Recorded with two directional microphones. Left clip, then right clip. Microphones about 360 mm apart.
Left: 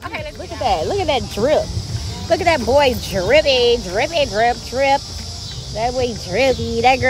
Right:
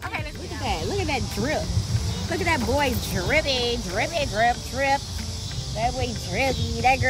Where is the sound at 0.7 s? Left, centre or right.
Left.